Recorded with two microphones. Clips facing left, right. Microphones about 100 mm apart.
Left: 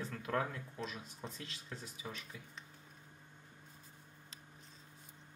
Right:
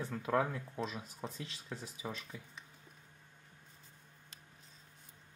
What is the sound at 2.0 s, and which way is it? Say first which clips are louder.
Speech: right 4 dB; 35° right (ahead or behind).